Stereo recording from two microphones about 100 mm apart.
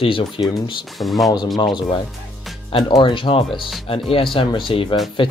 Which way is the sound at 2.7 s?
55° left (ahead or behind).